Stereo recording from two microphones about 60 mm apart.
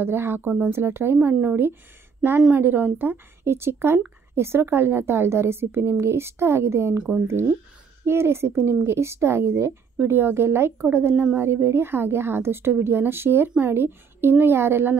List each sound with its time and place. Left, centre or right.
0.0 s a woman's voice: right
8.0 s a woman's voice: right